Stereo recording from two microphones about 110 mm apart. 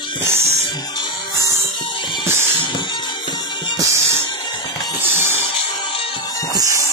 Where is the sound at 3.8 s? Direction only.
25° right (ahead or behind).